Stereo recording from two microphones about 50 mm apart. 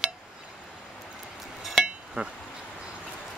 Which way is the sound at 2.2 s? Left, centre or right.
Right.